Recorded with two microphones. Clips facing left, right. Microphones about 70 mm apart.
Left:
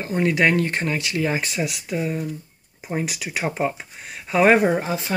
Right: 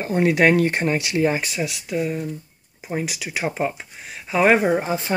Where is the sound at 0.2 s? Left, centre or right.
Centre.